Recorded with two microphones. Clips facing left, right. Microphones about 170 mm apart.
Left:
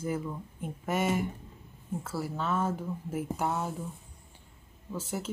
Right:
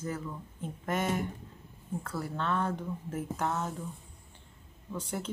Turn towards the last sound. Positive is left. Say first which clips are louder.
# left 1 dB
turn(degrees=5)  # may be behind; listen again after turning